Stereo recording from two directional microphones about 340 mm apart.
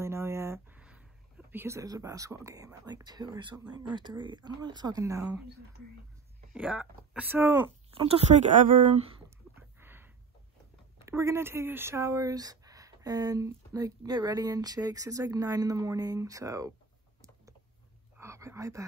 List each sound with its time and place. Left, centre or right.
0.0 s a sound: centre
1.5 s speech: centre
6.5 s speech: centre
9.6 s a sound: centre
11.0 s speech: centre
18.1 s whispering: centre